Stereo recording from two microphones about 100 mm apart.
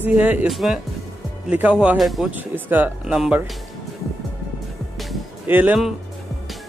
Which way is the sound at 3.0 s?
5° right (ahead or behind).